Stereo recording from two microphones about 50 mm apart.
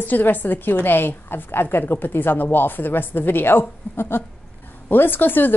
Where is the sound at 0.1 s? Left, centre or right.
Left.